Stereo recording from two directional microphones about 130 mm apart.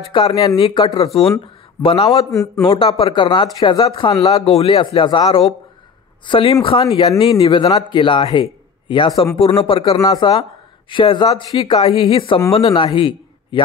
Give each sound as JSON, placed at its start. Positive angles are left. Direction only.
{"t": 0.3, "sound": "a man's voice", "side_deg": 30}
{"t": 2.3, "sound": "a man's voice", "side_deg": 25}
{"t": 4.5, "sound": "a man's voice", "side_deg": 50}
{"t": 7.6, "sound": "a man's voice", "side_deg": 35}
{"t": 9.4, "sound": "a man's voice", "side_deg": 40}